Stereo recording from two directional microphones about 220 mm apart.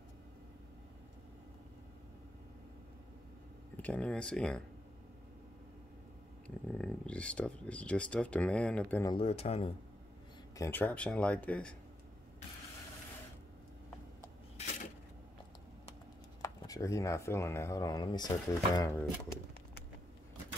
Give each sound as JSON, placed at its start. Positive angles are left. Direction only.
{"t": 3.7, "sound": "speech", "side_deg": 5}
{"t": 6.4, "sound": "speech", "side_deg": 5}
{"t": 9.1, "sound": "speech", "side_deg": 25}
{"t": 10.6, "sound": "speech", "side_deg": 10}
{"t": 16.3, "sound": "speech", "side_deg": 15}